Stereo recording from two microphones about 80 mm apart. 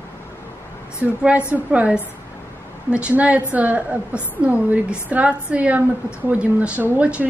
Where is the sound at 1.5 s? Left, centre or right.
Centre.